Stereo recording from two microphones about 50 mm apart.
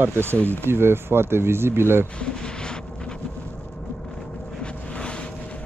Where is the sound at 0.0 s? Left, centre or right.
Right.